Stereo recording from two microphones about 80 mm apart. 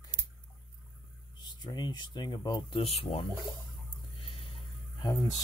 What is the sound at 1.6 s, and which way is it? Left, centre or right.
Speech, left.